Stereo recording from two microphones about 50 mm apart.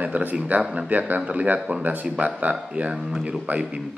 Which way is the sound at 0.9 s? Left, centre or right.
Right.